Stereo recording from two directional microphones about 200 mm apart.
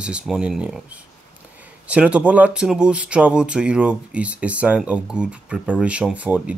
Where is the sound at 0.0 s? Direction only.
5° right (ahead or behind).